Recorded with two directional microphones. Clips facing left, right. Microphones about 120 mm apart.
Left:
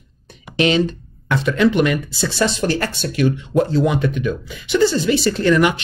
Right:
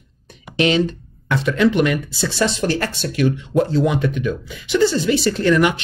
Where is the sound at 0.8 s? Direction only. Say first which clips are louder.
Left 1 dB; 45° left (ahead or behind).